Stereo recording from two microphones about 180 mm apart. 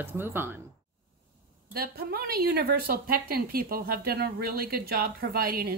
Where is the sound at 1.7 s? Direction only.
55° right (ahead or behind).